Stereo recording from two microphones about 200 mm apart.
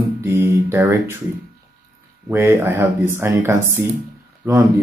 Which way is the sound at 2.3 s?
10° right (ahead or behind).